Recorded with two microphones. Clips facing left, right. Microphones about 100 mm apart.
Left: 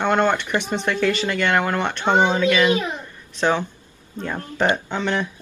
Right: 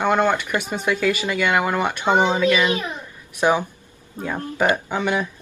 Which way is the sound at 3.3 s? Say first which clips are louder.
Right 2 dB; 10° right (ahead or behind).